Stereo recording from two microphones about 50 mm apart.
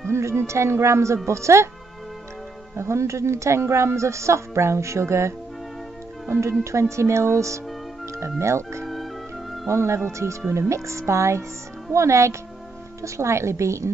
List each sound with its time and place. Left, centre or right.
0.0 s a woman's voice: right
2.7 s a woman's voice: right
6.6 s a woman's voice: right
8.4 s a woman's voice: right
8.8 s music: centre
9.7 s a woman's voice: right